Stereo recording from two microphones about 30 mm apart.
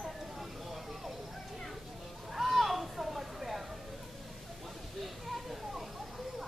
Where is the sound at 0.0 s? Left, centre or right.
Centre.